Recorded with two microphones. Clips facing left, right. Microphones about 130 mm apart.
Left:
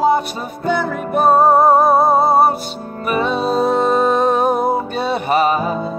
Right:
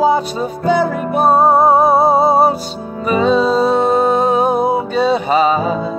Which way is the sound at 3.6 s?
65° right (ahead or behind).